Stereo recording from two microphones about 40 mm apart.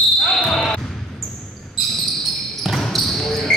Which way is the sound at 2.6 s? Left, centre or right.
Centre.